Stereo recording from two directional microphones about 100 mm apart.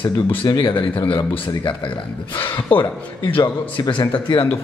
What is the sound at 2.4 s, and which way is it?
Speech, 20° left (ahead or behind).